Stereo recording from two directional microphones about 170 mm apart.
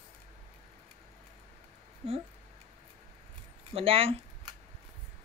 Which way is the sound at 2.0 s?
35° right (ahead or behind).